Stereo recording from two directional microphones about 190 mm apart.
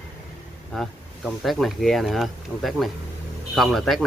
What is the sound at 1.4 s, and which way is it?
Speech, centre (ahead or behind).